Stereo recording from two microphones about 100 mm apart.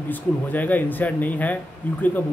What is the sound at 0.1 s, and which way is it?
Speech, 15° left (ahead or behind).